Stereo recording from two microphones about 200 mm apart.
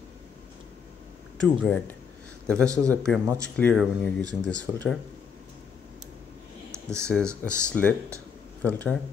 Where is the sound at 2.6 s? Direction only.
15° right (ahead or behind).